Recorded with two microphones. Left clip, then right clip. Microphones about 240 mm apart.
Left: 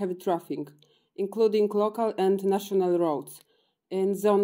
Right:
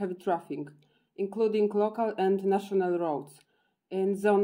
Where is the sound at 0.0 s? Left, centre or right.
Left.